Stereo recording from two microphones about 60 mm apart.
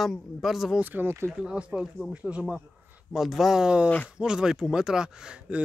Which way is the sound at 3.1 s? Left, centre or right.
Centre.